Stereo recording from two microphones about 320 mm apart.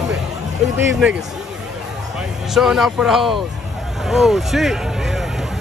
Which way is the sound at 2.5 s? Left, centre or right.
Centre.